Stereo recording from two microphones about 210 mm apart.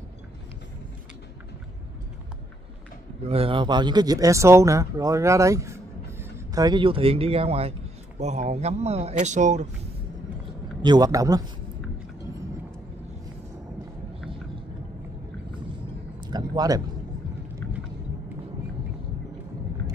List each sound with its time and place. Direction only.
3.3 s speech: 25° right (ahead or behind)
10.8 s speech: 20° right (ahead or behind)
16.2 s a sound: 20° right (ahead or behind)